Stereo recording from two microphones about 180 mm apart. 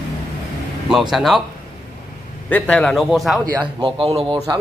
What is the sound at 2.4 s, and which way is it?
Speech, 5° left (ahead or behind).